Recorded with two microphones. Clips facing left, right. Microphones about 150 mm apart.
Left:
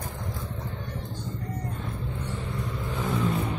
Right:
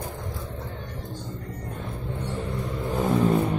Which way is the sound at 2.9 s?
45° right (ahead or behind).